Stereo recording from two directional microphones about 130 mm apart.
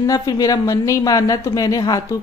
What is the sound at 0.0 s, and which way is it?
Speech, 25° left (ahead or behind).